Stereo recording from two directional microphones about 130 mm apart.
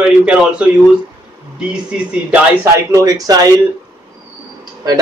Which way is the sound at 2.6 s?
25° right (ahead or behind).